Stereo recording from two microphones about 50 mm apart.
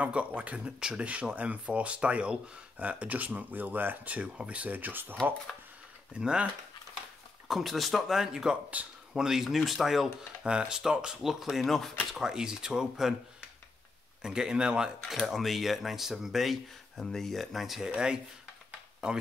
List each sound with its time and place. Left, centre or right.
0.0 s speech: right
6.1 s speech: right
7.4 s speech: centre
8.8 s speech: right
9.1 s speech: centre
10.4 s speech: centre
11.3 s speech: centre
14.2 s speech: centre
15.0 s speech: centre
17.9 s speech: centre